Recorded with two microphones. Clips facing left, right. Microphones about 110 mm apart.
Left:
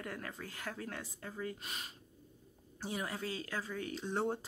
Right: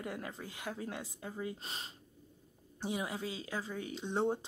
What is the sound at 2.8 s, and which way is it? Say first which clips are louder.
A woman's voice: right 2 dB; 15° right (ahead or behind).